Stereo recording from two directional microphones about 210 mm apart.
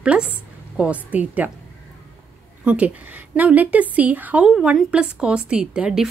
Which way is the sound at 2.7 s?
5° right (ahead or behind).